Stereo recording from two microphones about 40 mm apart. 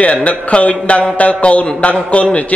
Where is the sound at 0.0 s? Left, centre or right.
Left.